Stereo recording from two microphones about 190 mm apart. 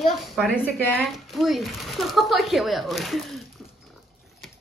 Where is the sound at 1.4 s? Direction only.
Centre (ahead or behind).